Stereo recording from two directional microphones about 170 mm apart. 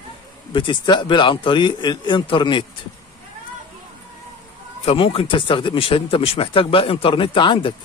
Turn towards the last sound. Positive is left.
turn(degrees=30)  # may be behind; listen again after turning